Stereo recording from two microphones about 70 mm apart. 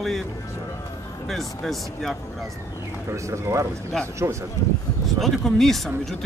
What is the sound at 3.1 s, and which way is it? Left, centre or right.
Speech, right.